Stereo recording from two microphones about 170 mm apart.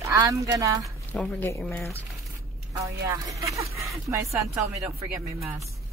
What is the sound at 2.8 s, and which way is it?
Speech, 20° right (ahead or behind).